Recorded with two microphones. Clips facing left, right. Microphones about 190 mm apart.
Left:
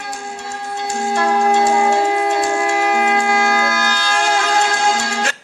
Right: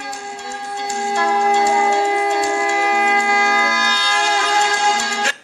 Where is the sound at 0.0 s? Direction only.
50° left (ahead or behind).